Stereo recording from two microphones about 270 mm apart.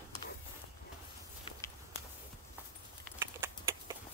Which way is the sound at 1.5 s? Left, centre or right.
Centre.